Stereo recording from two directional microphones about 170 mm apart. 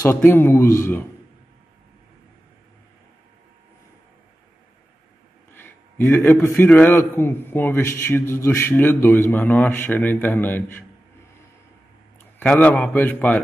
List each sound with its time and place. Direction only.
0.0 s a man's voice: 15° left (ahead or behind)
5.5 s a man's voice: 15° left (ahead or behind)
12.4 s a man's voice: 10° left (ahead or behind)